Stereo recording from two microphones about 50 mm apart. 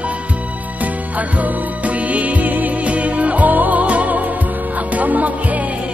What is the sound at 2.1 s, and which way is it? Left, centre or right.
Music, right.